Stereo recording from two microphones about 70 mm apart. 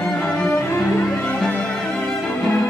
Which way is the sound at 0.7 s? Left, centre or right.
Left.